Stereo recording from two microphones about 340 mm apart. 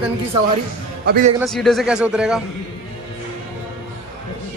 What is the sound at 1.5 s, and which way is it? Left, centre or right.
Speech, centre.